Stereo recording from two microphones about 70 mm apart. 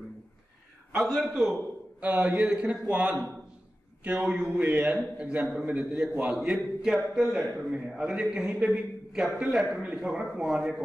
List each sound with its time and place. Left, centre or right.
0.9 s a man's voice: centre
2.0 s a man's voice: centre